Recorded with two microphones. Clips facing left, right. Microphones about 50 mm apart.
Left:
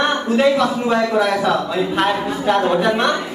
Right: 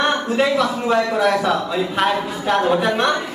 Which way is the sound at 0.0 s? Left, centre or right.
Centre.